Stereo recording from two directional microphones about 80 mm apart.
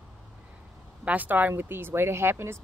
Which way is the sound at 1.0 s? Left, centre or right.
Centre.